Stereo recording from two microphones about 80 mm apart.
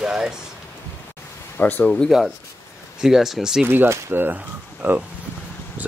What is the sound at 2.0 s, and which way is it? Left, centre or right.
Speech, centre.